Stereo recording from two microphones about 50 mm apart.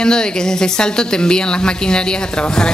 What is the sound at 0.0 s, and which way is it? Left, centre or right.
Speech, centre.